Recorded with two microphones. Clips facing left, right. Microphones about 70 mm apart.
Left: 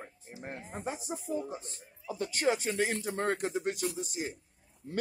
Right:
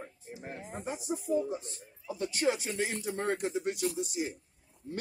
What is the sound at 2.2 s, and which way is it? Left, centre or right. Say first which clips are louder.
Speech: left 1 dB; left.